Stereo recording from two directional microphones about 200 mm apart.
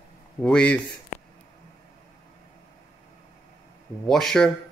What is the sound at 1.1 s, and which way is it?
Whispering, 35° left (ahead or behind).